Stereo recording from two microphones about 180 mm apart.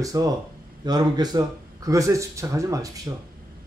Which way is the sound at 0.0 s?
20° right (ahead or behind).